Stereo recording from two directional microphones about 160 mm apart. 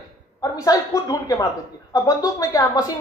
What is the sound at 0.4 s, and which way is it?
A woman's voice, 20° left (ahead or behind).